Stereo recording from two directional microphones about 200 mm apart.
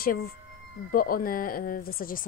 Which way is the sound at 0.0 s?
50° left (ahead or behind).